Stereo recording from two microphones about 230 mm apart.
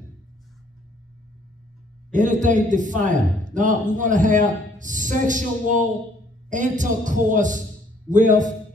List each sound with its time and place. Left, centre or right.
2.1 s a man's voice: right